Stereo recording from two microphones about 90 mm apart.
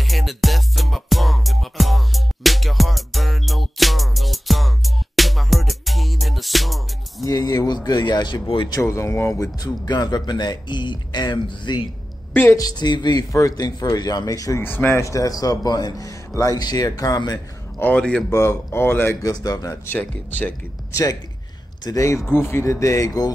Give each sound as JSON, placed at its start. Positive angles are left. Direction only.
{"t": 0.0, "sound": "music", "side_deg": 0}
{"t": 7.2, "sound": "speech", "side_deg": 40}
{"t": 8.8, "sound": "speech", "side_deg": 30}
{"t": 9.4, "sound": "speech", "side_deg": 45}
{"t": 13.3, "sound": "speech", "side_deg": 40}
{"t": 14.6, "sound": "speech", "side_deg": 25}
{"t": 17.7, "sound": "speech", "side_deg": 20}
{"t": 18.3, "sound": "speech", "side_deg": 30}
{"t": 19.2, "sound": "speech", "side_deg": 45}
{"t": 19.9, "sound": "speech", "side_deg": 20}
{"t": 20.9, "sound": "speech", "side_deg": 40}